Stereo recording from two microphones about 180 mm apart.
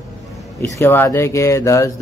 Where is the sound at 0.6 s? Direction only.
10° left (ahead or behind).